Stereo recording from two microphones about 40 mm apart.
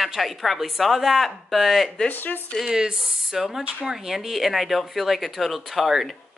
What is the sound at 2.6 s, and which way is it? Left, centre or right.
Speech, centre.